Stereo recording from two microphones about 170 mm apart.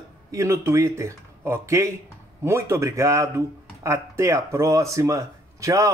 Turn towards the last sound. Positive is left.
turn(degrees=-20)  # may be behind; listen again after turning